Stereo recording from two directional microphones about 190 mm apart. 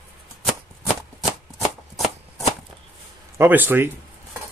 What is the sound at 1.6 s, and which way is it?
Shuffling cards, centre (ahead or behind).